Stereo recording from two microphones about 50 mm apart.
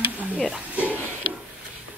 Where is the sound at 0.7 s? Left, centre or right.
Right.